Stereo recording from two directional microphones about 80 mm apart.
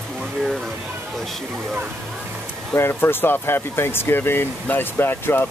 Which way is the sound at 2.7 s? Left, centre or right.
Left.